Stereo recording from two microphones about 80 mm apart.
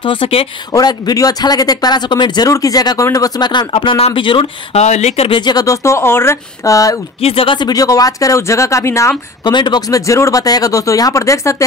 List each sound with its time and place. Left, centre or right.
0.0 s speech: left
0.7 s speech: left
2.4 s speech: left
5.3 s speech: left
5.7 s speech: left
7.4 s speech: left
7.7 s speech: left
9.4 s speech: left
9.8 s speech: left